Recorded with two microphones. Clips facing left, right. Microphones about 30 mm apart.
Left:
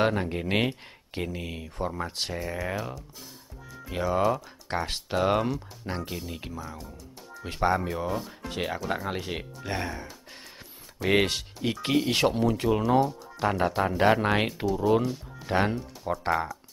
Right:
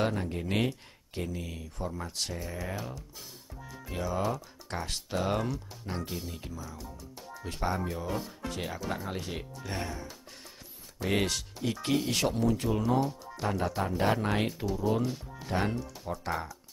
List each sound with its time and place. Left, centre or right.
0.0 s speech: left
2.6 s speech: centre
3.9 s speech: left
6.0 s speech: centre
6.3 s speech: left
7.2 s music: centre
7.4 s speech: left
11.1 s speech: left
13.0 s speech: centre
13.4 s speech: left
14.9 s speech: centre
15.4 s speech: left